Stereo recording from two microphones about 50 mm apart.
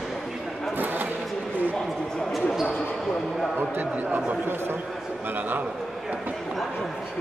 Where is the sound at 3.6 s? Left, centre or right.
Right.